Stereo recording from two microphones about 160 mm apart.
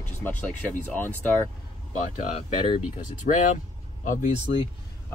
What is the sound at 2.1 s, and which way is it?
Speech, 50° left (ahead or behind).